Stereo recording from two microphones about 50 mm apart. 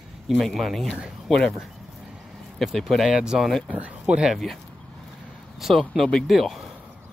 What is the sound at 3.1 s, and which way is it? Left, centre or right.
Speech, centre.